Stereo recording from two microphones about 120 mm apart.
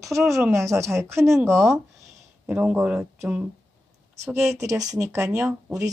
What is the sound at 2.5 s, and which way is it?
Speech, 10° right (ahead or behind).